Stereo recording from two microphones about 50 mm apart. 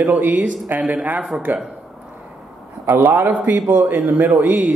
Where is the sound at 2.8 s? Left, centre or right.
Right.